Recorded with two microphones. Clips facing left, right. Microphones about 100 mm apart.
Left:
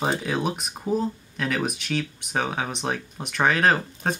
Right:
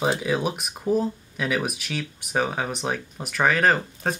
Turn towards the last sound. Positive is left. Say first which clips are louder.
# even
turn(degrees=0)  # may be behind; listen again after turning